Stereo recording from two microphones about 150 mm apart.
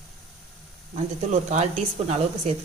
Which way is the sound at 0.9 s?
50° right (ahead or behind).